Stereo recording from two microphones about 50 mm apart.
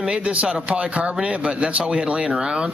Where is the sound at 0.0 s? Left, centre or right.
Right.